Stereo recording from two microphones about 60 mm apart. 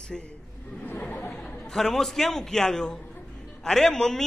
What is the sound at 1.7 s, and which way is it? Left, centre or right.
A man's voice, centre.